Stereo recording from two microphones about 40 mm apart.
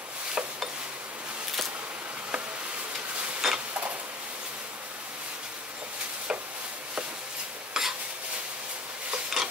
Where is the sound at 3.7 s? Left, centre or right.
Right.